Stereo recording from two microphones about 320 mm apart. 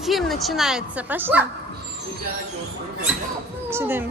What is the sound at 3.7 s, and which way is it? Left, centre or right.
Speech, centre.